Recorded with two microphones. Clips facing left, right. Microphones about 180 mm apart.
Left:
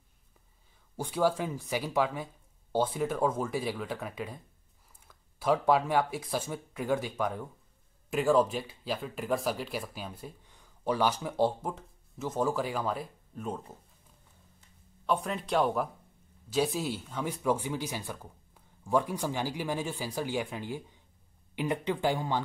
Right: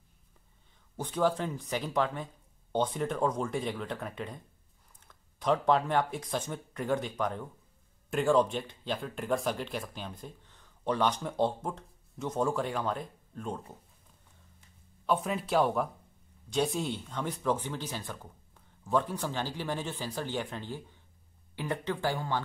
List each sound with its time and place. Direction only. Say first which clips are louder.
0.9 s speech: left 1 dB; 10° left (ahead or behind)
15.0 s speech: right 1 dB; centre (ahead or behind); by 22.4 s 15° left (ahead or behind)